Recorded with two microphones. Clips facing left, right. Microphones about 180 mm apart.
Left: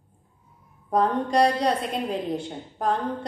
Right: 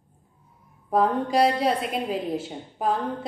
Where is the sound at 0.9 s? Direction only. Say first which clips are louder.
Even; 5° right (ahead or behind).